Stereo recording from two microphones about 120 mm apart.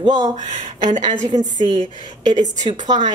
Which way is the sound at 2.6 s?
85° right.